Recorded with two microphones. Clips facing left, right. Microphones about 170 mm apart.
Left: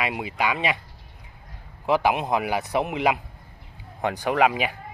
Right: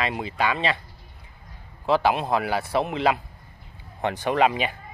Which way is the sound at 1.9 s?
15° left (ahead or behind).